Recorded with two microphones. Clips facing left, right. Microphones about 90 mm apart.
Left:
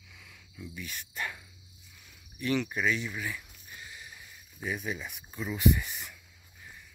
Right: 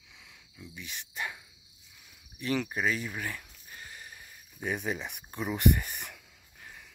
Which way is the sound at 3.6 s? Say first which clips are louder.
Even; 45° right (ahead or behind).